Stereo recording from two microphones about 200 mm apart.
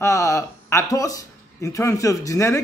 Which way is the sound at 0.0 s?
15° left (ahead or behind).